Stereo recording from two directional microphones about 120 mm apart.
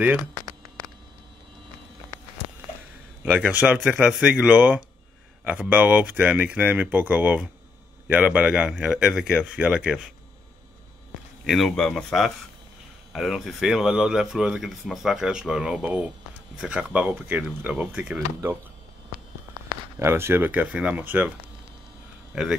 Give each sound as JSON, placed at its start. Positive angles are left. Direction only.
{"t": 0.5, "sound": "a sound", "side_deg": -30}
{"t": 3.3, "sound": "speech", "side_deg": -10}
{"t": 11.4, "sound": "speech", "side_deg": 0}
{"t": 20.0, "sound": "speech", "side_deg": -20}
{"t": 22.3, "sound": "speech", "side_deg": -5}